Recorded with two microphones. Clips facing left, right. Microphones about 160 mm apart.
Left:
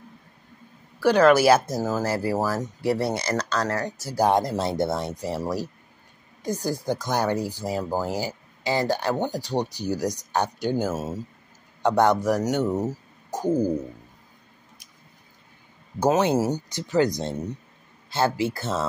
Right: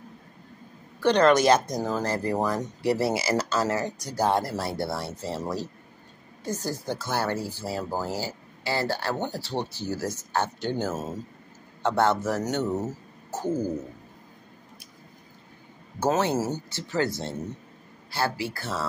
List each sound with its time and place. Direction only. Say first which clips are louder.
1.0 s speech: left 2 dB; 5° left (ahead or behind)
4.1 s speech: left 4 dB; 15° left (ahead or behind)
16.0 s speech: left 4 dB; 15° left (ahead or behind)